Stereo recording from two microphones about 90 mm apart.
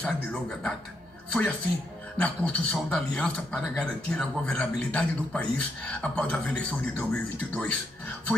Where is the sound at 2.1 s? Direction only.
15° left (ahead or behind).